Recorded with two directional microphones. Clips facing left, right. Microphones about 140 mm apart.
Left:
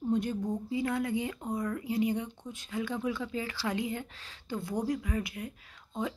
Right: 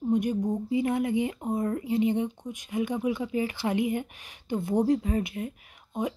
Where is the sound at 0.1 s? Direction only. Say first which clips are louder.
Right 5 dB; 15° right (ahead or behind).